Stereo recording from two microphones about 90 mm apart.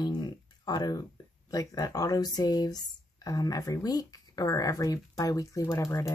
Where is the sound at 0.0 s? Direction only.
50° left (ahead or behind).